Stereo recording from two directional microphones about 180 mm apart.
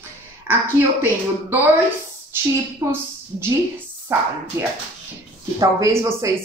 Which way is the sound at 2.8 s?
15° right (ahead or behind).